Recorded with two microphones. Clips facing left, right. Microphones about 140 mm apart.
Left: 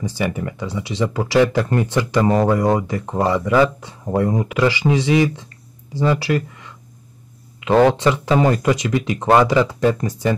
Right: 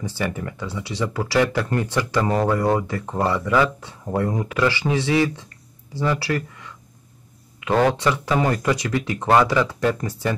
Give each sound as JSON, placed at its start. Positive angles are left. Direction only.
{"t": 0.0, "sound": "speech", "side_deg": 15}
{"t": 7.6, "sound": "speech", "side_deg": 20}